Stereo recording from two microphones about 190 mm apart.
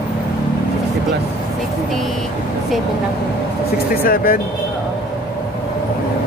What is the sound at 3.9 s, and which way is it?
Speech, 50° left (ahead or behind).